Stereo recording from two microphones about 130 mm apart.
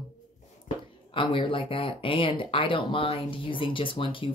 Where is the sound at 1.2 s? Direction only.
40° left (ahead or behind).